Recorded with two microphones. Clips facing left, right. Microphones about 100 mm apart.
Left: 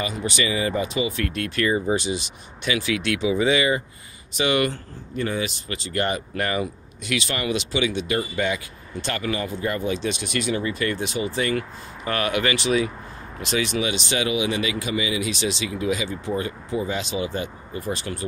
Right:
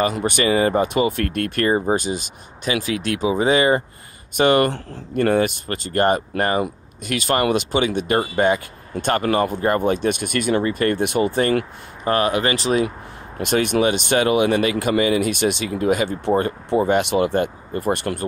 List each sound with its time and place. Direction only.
0.0 s speech: 50° right (ahead or behind)
13.4 s speech: 50° right (ahead or behind)